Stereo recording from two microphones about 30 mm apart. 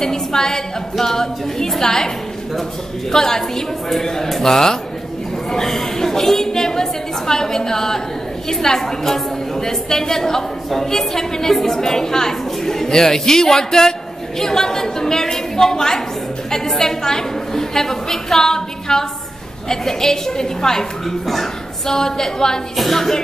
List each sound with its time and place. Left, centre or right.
0.0 s a woman's voice: centre
3.1 s a woman's voice: centre